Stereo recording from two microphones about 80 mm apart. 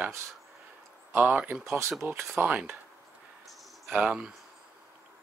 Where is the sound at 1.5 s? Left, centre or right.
Centre.